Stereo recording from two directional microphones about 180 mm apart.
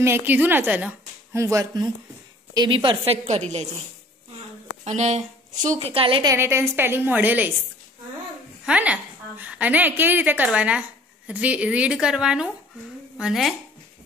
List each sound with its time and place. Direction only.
0.0 s a woman's voice: 10° right (ahead or behind); by 3.6 s 40° right (ahead or behind)
4.8 s a woman's voice: 40° right (ahead or behind)
6.2 s a woman's voice: 15° right (ahead or behind)
8.6 s a woman's voice: 10° right (ahead or behind)